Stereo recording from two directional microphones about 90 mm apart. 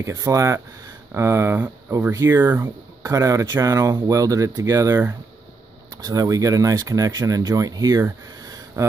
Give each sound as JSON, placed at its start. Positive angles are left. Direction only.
{"t": 0.0, "sound": "speech", "side_deg": -35}
{"t": 6.0, "sound": "speech", "side_deg": -40}